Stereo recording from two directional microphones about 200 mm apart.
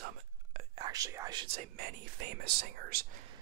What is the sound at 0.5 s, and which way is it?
Whispering, 35° right (ahead or behind).